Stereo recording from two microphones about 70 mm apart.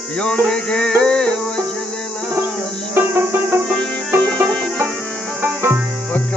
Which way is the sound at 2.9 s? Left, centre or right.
Right.